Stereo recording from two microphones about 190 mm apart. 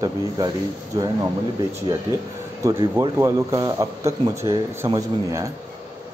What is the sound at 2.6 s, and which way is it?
Speech, 15° right (ahead or behind).